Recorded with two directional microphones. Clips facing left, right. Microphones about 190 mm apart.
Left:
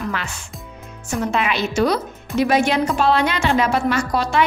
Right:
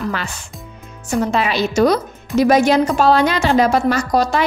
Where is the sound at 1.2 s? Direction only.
35° right (ahead or behind).